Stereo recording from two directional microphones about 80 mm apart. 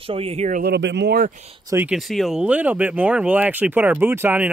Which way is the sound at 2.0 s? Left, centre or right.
Centre.